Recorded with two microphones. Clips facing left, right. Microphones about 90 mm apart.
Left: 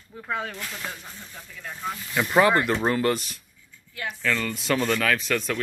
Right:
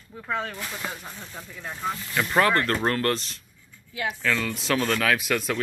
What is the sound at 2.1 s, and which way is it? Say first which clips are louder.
Speech: left 2 dB; 5° left (ahead or behind).